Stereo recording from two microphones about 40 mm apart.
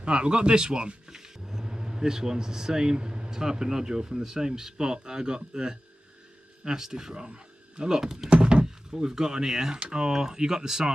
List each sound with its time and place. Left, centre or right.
0.0 s speech: right
8.3 s horse: right
8.9 s speech: centre